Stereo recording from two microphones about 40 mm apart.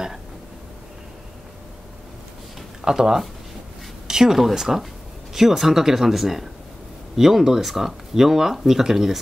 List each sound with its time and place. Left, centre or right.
2.8 s speech: centre